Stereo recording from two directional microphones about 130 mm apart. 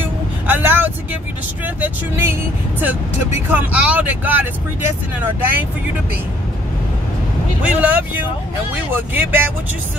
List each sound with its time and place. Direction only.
0.0 s vehicle: 15° right (ahead or behind)
2.8 s speech: 15° right (ahead or behind)
7.6 s speech: 10° right (ahead or behind)